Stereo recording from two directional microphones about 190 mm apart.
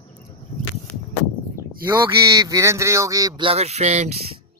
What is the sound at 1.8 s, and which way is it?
Speech, 15° right (ahead or behind).